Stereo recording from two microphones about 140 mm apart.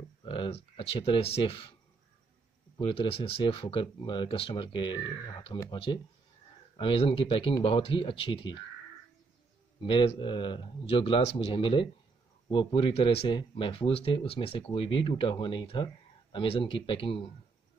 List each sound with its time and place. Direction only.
0.2 s speech: 40° left (ahead or behind)
2.8 s speech: 40° left (ahead or behind)
6.8 s speech: 40° left (ahead or behind)
9.8 s speech: 40° left (ahead or behind)